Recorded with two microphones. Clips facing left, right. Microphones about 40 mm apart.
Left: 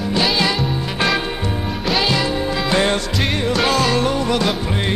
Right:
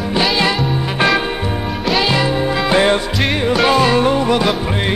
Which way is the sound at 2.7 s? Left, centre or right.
Centre.